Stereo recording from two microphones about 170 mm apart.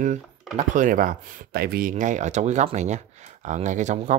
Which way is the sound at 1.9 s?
45° right (ahead or behind).